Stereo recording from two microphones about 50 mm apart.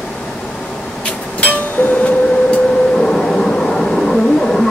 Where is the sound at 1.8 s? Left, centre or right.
Left.